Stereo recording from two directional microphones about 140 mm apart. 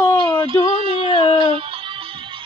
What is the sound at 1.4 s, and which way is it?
Music, 40° right (ahead or behind).